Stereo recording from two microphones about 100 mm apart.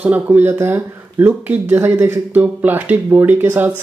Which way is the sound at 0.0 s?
15° right (ahead or behind).